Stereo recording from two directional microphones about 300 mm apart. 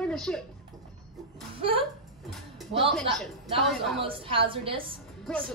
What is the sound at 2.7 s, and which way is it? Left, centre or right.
Speech, centre.